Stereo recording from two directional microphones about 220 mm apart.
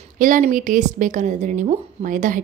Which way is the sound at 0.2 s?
35° right (ahead or behind).